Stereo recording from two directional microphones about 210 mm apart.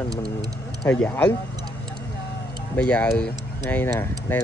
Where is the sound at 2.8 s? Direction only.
5° left (ahead or behind).